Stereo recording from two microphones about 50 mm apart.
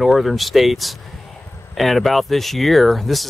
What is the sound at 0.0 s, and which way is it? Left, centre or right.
Speech, centre.